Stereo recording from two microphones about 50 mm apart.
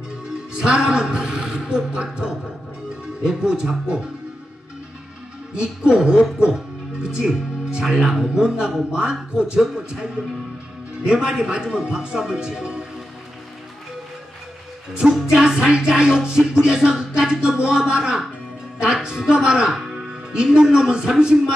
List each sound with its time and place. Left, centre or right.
0.6 s music: centre
5.5 s music: centre
7.2 s speech: centre
7.9 s music: centre
8.9 s speech: centre
9.8 s music: centre
15.1 s music: centre